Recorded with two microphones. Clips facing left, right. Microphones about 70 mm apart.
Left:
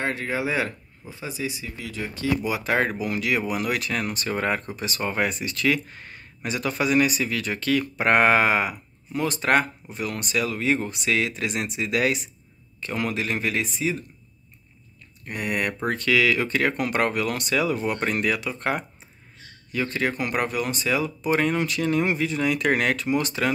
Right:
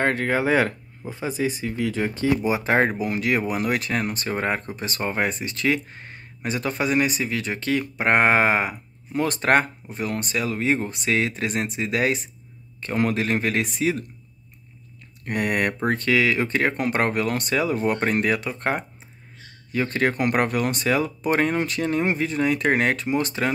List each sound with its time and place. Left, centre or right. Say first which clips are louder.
0.0 s speech: right 5 dB; right
9.2 s speech: right 2 dB; right
15.2 s speech: right 4 dB; right
15.8 s speech: left 1 dB; right